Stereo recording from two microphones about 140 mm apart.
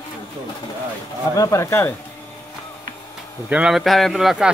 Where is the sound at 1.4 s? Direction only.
20° left (ahead or behind).